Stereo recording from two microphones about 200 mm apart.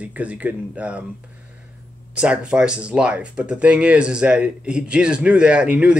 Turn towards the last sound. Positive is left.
turn(degrees=-5)  # may be behind; listen again after turning